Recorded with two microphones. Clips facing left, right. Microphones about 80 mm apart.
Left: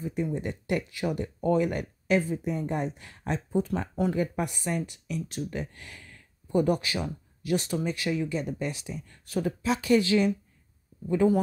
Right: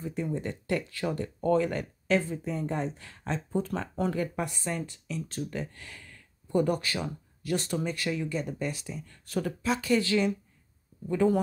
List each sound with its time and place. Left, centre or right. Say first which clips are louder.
0.0 s speech: left 2 dB; centre
3.5 s speech: left 3 dB; centre
9.4 s speech: left 2 dB; centre